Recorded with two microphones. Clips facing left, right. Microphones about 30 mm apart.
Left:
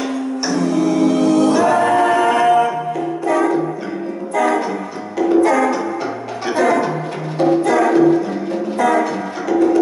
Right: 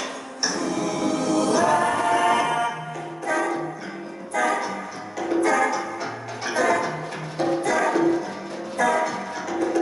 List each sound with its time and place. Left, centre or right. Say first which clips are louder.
1.2 s music: left 4 dB; left
5.4 s music: left 6 dB; left
8.8 s music: left 5 dB; left